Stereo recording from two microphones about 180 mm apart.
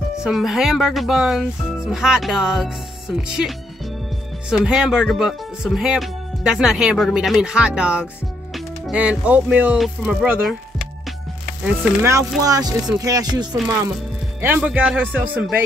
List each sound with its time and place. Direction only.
0.2 s speech: centre (ahead or behind); by 13.6 s 20° right (ahead or behind)
14.4 s speech: 10° right (ahead or behind)